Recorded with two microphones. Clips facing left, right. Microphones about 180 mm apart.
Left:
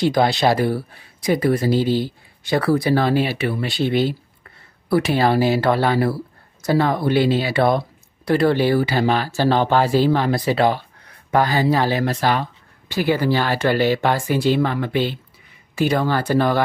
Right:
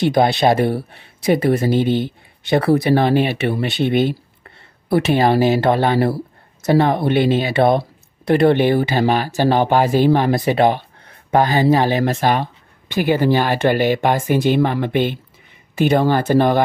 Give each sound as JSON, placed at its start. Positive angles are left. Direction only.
{"t": 0.4, "sound": "speech", "side_deg": -25}
{"t": 4.8, "sound": "speech", "side_deg": -25}